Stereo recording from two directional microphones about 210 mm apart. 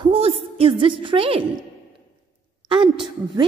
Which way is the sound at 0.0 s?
30° right (ahead or behind).